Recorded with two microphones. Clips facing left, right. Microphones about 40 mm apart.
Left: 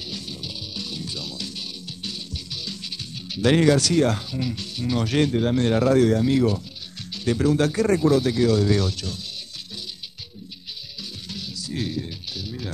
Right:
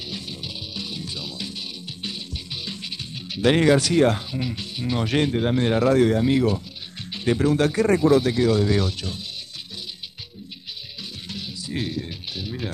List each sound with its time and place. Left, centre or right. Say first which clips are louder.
0.0 s music: right 1 dB; centre
7.1 s speech: right 1 dB; right
11.0 s music: even; centre